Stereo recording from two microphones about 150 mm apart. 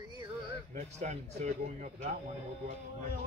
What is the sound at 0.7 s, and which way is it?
Speech, 50° right (ahead or behind).